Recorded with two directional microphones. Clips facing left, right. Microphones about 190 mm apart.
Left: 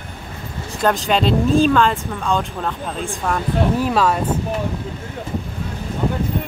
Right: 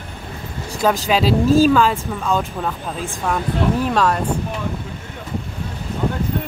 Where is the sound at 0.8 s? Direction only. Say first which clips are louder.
Even; centre (ahead or behind).